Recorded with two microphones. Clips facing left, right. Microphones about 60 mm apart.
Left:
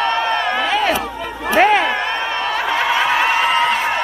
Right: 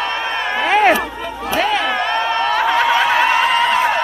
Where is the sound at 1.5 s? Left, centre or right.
Left.